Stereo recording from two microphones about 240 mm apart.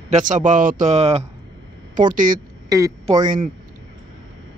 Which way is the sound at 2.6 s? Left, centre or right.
Centre.